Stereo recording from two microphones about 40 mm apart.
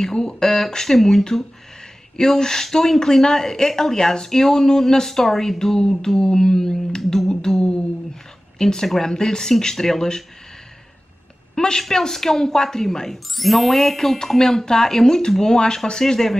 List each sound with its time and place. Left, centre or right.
0.0 s a woman's voice: centre
11.5 s a sound: centre
11.8 s a woman's voice: centre